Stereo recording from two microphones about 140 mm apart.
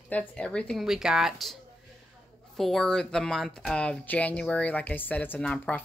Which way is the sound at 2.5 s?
Centre (ahead or behind).